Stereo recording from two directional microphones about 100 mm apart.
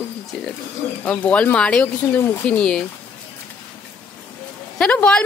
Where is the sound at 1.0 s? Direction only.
15° left (ahead or behind).